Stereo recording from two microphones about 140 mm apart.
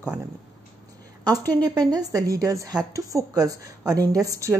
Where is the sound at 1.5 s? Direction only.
30° right (ahead or behind).